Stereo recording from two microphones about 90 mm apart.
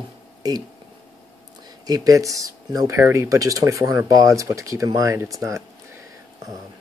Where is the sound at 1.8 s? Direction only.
45° right (ahead or behind).